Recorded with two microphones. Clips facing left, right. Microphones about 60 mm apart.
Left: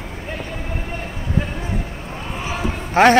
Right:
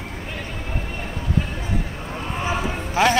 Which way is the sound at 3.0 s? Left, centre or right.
Left.